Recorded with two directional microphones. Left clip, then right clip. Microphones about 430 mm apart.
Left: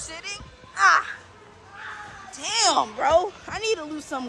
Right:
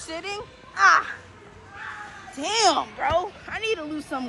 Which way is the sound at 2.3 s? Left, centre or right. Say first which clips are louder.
Right 1 dB; centre.